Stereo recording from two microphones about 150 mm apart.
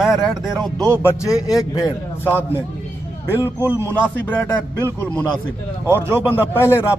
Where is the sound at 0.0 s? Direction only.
Centre (ahead or behind).